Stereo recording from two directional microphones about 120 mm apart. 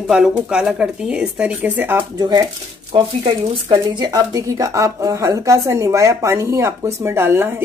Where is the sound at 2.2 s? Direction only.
35° right (ahead or behind).